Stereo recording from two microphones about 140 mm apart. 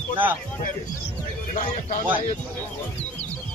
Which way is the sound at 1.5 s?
60° left (ahead or behind).